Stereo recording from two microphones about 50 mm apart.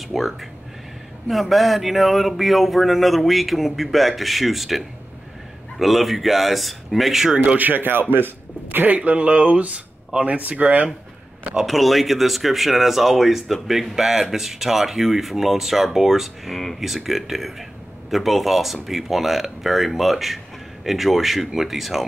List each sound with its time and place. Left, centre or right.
0.1 s speech: centre
7.5 s speech: right
11.6 s speech: centre